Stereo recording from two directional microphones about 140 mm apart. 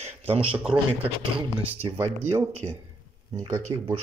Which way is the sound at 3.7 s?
30° right (ahead or behind).